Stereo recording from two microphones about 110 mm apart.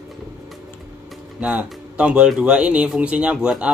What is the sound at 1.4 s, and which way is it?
Speech, 10° right (ahead or behind).